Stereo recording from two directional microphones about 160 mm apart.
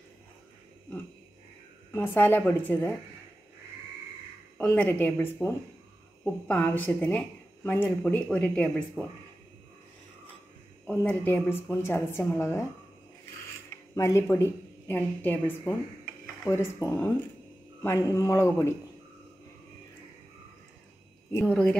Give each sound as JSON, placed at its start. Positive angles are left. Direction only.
{"t": 1.9, "sound": "a woman's voice", "side_deg": 15}
{"t": 4.6, "sound": "a woman's voice", "side_deg": 10}
{"t": 10.9, "sound": "a woman's voice", "side_deg": 10}
{"t": 13.9, "sound": "a woman's voice", "side_deg": 15}
{"t": 21.3, "sound": "a woman's voice", "side_deg": 10}